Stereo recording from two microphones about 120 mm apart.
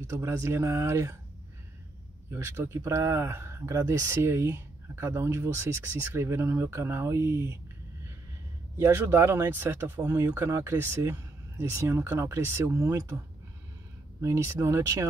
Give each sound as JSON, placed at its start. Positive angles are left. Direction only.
{"t": 0.0, "sound": "speech", "side_deg": -25}
{"t": 2.3, "sound": "speech", "side_deg": -20}
{"t": 8.7, "sound": "speech", "side_deg": -25}
{"t": 14.2, "sound": "speech", "side_deg": -25}